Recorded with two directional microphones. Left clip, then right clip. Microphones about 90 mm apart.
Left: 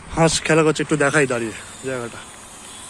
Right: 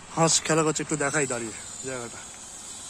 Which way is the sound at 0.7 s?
Centre (ahead or behind).